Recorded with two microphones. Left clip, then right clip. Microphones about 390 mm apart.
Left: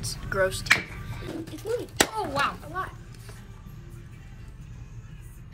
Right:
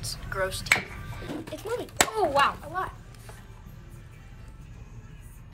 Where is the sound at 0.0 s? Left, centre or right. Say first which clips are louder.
Left 4 dB; centre.